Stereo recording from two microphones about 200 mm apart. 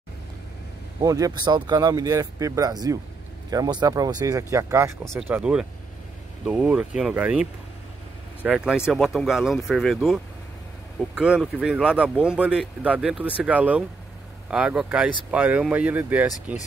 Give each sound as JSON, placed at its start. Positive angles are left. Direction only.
{"t": 1.0, "sound": "speech", "side_deg": -15}